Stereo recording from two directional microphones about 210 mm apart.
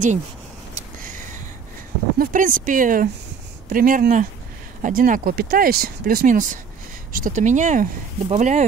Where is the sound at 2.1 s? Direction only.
40° right (ahead or behind).